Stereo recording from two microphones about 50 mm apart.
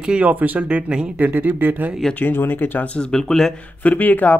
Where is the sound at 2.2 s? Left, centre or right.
Left.